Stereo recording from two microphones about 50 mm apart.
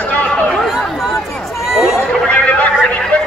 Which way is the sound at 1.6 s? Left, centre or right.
Centre.